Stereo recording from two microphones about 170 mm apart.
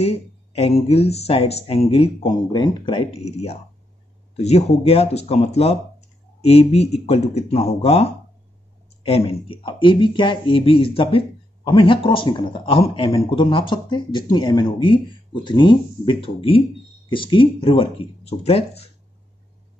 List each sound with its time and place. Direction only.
0.0 s speech: 35° left (ahead or behind)